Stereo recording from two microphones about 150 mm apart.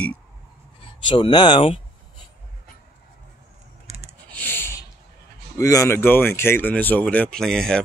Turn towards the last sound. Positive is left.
turn(degrees=5)  # may be behind; listen again after turning